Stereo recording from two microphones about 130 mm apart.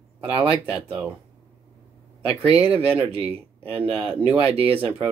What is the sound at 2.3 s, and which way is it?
Speech, 10° right (ahead or behind).